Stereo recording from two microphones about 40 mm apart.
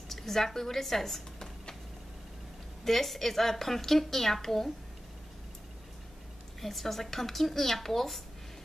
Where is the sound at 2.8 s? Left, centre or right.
Centre.